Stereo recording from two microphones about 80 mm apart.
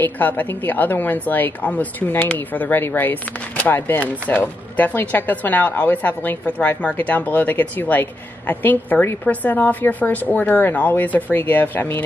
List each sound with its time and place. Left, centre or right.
0.0 s a woman's voice: left